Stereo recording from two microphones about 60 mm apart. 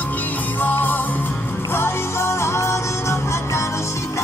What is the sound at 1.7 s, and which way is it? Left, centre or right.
Music, left.